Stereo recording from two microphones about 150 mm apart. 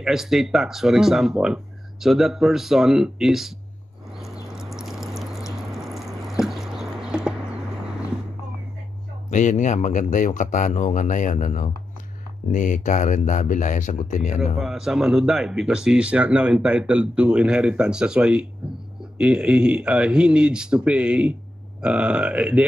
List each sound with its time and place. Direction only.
0.0 s speech: 5° right (ahead or behind)
4.2 s a sound: centre (ahead or behind)
5.6 s drip: centre (ahead or behind)
9.3 s speech: 55° left (ahead or behind)
14.4 s speech: 5° right (ahead or behind)